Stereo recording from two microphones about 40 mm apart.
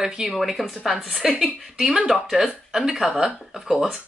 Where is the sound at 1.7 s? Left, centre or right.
Centre.